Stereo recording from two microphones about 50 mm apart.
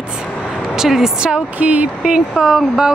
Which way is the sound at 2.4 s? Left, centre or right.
Centre.